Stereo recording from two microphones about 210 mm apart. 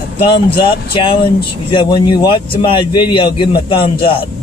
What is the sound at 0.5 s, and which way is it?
Speech, 25° left (ahead or behind).